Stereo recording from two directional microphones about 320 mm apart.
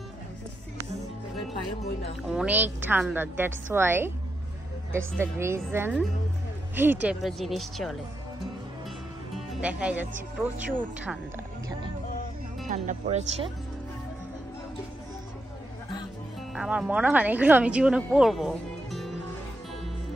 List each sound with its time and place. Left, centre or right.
2.2 s a woman's voice: centre
9.3 s music: centre
11.0 s speech: centre
12.6 s speech: right
16.5 s speech: centre